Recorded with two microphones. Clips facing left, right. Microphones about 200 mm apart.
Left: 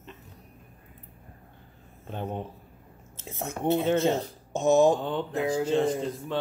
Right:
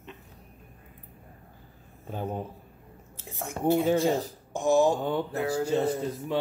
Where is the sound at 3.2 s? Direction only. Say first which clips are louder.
Right 1 dB; 20° left (ahead or behind).